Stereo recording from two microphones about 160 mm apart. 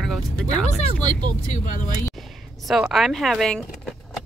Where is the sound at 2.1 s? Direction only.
Centre (ahead or behind).